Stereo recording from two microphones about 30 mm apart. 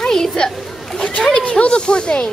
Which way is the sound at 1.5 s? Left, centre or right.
Left.